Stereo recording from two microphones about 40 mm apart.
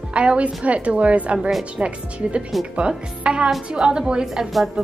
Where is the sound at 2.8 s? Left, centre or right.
Right.